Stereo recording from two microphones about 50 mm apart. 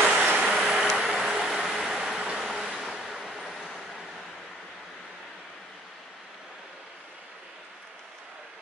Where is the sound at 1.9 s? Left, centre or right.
Centre.